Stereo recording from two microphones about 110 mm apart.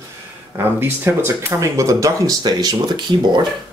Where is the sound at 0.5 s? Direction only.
20° right (ahead or behind); by 3.4 s 40° right (ahead or behind).